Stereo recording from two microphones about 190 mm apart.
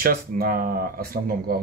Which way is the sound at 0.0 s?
50° right (ahead or behind).